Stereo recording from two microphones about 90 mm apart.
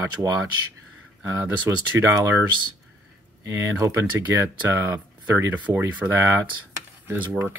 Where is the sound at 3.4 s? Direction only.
30° right (ahead or behind).